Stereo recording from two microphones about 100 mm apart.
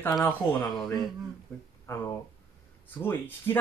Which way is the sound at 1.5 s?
5° left (ahead or behind).